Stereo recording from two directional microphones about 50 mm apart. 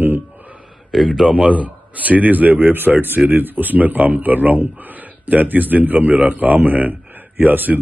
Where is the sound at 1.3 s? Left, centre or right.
Right.